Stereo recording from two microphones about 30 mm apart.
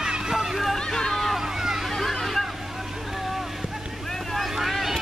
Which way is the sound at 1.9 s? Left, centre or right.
Centre.